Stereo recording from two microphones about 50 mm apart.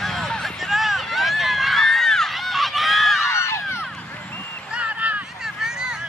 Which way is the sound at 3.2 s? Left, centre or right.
Left.